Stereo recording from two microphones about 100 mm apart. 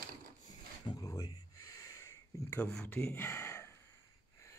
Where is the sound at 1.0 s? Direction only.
30° left (ahead or behind).